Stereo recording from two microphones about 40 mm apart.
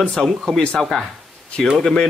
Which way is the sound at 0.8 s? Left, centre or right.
Centre.